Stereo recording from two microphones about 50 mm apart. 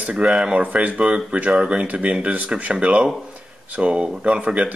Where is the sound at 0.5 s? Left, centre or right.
Right.